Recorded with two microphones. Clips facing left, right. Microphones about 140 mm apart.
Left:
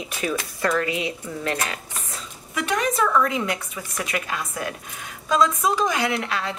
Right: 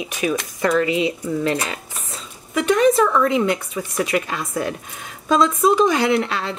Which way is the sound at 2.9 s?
25° right (ahead or behind).